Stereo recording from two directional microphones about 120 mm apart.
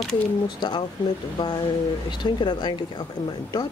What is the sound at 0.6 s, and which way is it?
Speech, 40° left (ahead or behind).